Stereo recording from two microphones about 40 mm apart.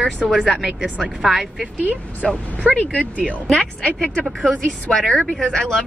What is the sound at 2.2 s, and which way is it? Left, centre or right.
Speech, centre.